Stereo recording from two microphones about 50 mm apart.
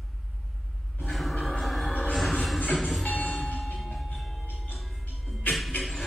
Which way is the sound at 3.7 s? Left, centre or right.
Centre.